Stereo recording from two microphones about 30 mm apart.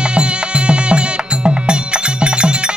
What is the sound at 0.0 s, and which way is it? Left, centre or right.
Music, right.